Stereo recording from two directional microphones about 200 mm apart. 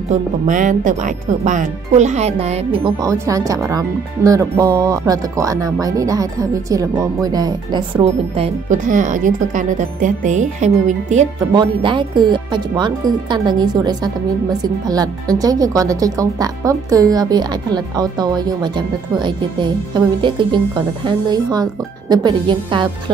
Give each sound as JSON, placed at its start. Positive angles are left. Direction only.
{"t": 0.1, "sound": "speech", "side_deg": -40}
{"t": 11.5, "sound": "a woman's voice", "side_deg": -25}